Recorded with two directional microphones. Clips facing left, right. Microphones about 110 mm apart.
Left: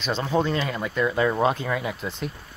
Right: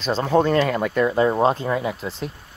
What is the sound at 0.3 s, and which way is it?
Speech, 55° right (ahead or behind).